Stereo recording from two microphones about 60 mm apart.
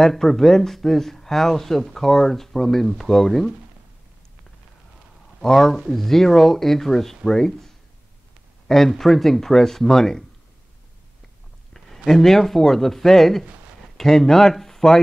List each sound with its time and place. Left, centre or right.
0.0 s speech: centre
5.4 s speech: centre
11.7 s speech: centre